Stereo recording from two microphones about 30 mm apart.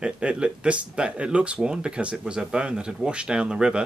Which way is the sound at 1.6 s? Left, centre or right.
Right.